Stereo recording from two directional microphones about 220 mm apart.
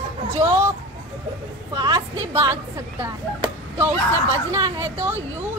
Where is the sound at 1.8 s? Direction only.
20° right (ahead or behind).